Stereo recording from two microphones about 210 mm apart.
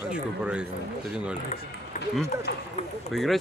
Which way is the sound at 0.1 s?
5° right (ahead or behind).